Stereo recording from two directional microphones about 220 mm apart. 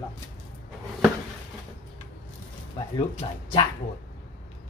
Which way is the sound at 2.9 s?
25° left (ahead or behind).